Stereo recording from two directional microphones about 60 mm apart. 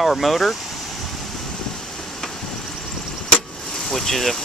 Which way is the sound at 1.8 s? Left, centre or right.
Centre.